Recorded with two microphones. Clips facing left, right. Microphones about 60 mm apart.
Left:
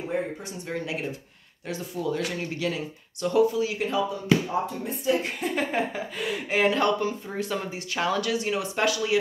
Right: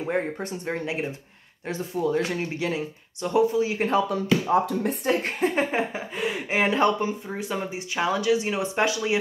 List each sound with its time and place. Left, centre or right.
0.0 s speech: right
4.5 s speech: right
5.5 s speech: right